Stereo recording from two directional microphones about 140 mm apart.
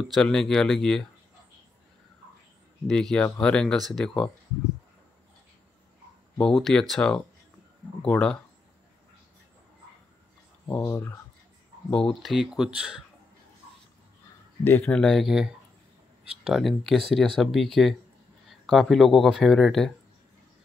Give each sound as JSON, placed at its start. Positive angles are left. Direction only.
{"t": 0.1, "sound": "speech", "side_deg": 5}
{"t": 2.9, "sound": "speech", "side_deg": 5}
{"t": 6.6, "sound": "speech", "side_deg": 5}
{"t": 10.7, "sound": "speech", "side_deg": 15}
{"t": 11.9, "sound": "speech", "side_deg": 5}
{"t": 14.6, "sound": "speech", "side_deg": 15}